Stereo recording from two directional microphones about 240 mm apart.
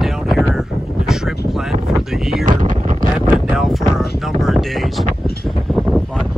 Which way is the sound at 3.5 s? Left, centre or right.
Centre.